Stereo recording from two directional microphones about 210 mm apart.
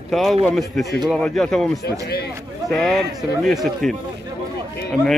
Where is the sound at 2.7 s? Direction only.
Centre (ahead or behind).